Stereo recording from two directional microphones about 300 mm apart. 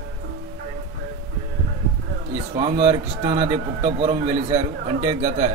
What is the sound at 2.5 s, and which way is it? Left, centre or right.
Speech, centre.